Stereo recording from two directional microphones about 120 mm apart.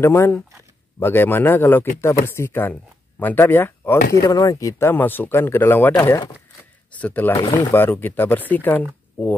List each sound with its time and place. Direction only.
0.0 s speech: 20° left (ahead or behind)